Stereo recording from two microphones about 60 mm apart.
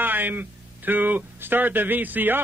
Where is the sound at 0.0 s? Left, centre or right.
Right.